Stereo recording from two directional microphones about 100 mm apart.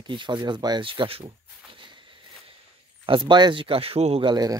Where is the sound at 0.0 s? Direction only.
50° right (ahead or behind).